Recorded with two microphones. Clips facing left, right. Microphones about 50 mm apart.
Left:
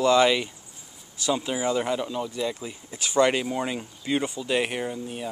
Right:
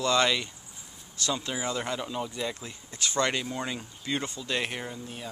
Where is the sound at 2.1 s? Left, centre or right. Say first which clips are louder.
Left 4 dB; centre.